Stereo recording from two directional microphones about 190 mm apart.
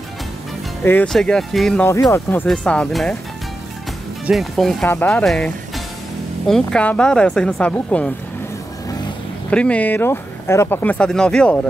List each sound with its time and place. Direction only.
0.8 s speech: 5° left (ahead or behind)
1.9 s speech: 15° left (ahead or behind)
2.4 s speech: 5° left (ahead or behind)
4.3 s speech: centre (ahead or behind)
9.5 s speech: 5° left (ahead or behind)